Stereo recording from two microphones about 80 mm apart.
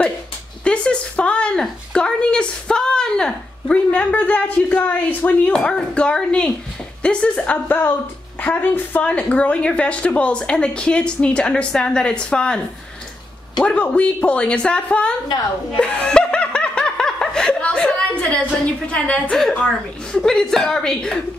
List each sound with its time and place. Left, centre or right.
0.7 s speech: centre
7.6 s speech: left
15.8 s snicker: centre
20.1 s speech: centre